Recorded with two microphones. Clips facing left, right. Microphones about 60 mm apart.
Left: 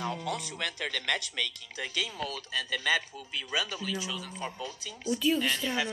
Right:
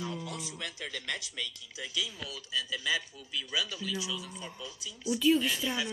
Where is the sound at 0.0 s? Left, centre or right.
Left.